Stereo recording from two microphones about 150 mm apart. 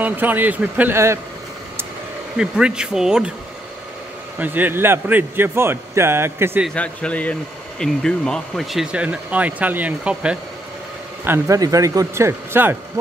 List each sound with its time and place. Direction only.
0.0 s speech: 10° right (ahead or behind)
2.3 s speech: 5° right (ahead or behind)
4.4 s speech: 10° right (ahead or behind)
6.7 s a man's voice: 10° left (ahead or behind); by 12.7 s 15° right (ahead or behind)